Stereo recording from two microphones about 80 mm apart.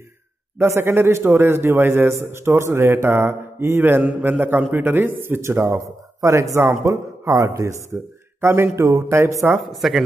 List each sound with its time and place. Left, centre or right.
0.6 s a man's voice: right
9.7 s speech: centre